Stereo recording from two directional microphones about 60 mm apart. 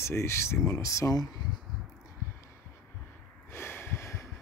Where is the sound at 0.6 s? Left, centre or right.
Left.